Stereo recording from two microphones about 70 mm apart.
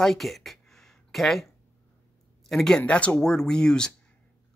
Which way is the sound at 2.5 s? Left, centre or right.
Centre.